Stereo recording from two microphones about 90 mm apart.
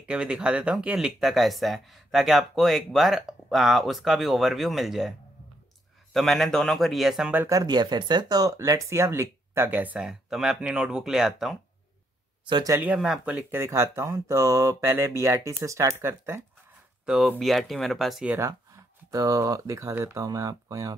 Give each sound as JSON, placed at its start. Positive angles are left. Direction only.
{"t": 0.1, "sound": "speech", "side_deg": -10}
{"t": 6.1, "sound": "speech", "side_deg": 0}
{"t": 7.6, "sound": "speech", "side_deg": -50}
{"t": 9.9, "sound": "speech", "side_deg": -5}
{"t": 13.0, "sound": "speech", "side_deg": -10}
{"t": 13.5, "sound": "speech", "side_deg": -30}
{"t": 17.0, "sound": "speech", "side_deg": -5}
{"t": 19.1, "sound": "speech", "side_deg": -40}